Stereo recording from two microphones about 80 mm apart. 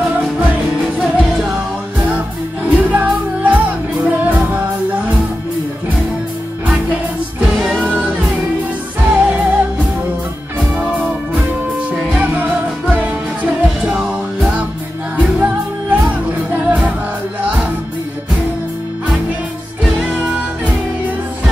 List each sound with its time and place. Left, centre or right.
0.9 s music: centre
2.7 s music: centre
6.7 s music: centre
9.2 s music: centre
12.0 s music: centre
20.1 s music: centre